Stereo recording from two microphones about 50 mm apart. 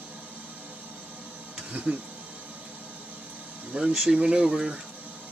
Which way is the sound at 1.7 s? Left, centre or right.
Right.